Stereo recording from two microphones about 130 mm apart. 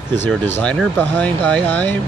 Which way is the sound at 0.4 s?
15° left (ahead or behind).